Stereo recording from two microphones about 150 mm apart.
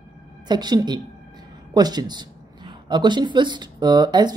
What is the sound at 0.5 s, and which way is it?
Speech, 30° right (ahead or behind).